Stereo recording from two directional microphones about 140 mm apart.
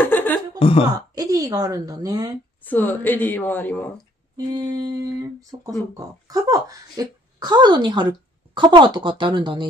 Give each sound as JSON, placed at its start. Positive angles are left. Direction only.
{"t": 0.0, "sound": "a sound", "side_deg": 15}
{"t": 0.6, "sound": "speech", "side_deg": 40}
{"t": 0.9, "sound": "speech", "side_deg": -25}
{"t": 2.6, "sound": "a woman's voice", "side_deg": 15}
{"t": 4.5, "sound": "speech", "side_deg": -25}